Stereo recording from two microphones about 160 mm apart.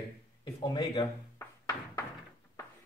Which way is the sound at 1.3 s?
15° left (ahead or behind).